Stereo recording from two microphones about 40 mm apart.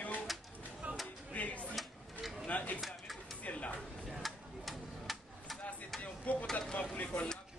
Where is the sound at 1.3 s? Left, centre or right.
Left.